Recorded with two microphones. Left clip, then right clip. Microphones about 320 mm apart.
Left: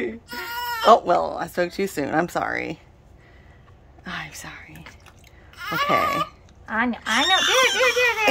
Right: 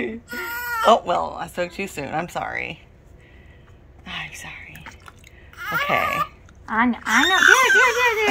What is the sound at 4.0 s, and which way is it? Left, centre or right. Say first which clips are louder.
Whispering: right 1 dB; left.